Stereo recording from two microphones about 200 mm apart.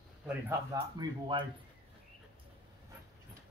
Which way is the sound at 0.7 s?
25° right (ahead or behind).